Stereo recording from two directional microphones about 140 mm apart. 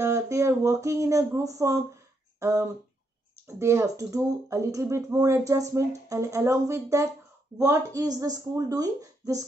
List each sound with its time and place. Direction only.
0.0 s speech: 20° right (ahead or behind)